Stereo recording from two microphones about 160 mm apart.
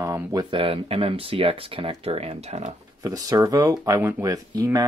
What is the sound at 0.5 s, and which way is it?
Speech, 35° right (ahead or behind).